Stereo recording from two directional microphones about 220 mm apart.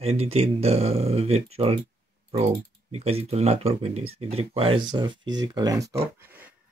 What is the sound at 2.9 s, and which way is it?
Speech, 30° right (ahead or behind).